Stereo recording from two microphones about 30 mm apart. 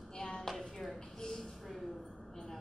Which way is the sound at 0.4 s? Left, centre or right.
Centre.